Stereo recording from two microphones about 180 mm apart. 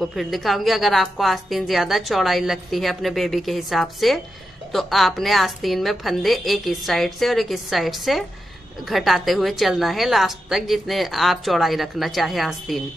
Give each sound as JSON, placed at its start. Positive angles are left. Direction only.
{"t": 0.0, "sound": "a woman's voice", "side_deg": 0}